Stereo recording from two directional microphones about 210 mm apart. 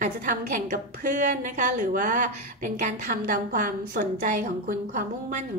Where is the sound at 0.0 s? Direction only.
40° right (ahead or behind).